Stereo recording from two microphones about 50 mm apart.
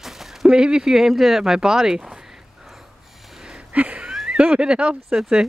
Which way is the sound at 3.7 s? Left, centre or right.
Right.